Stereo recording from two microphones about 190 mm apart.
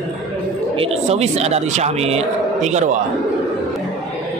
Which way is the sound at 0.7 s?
30° right (ahead or behind).